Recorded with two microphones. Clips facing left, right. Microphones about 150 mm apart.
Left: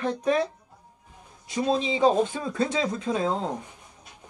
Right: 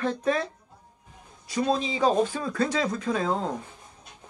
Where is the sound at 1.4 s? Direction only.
25° left (ahead or behind).